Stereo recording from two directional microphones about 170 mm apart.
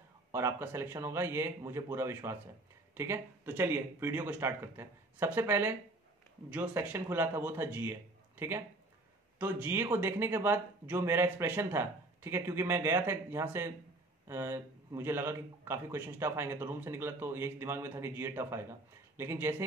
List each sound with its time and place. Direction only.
0.3 s speech: 15° right (ahead or behind)